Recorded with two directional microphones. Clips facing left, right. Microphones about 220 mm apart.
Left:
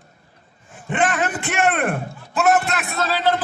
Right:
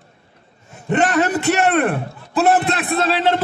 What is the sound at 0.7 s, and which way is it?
A man's voice, 40° right (ahead or behind).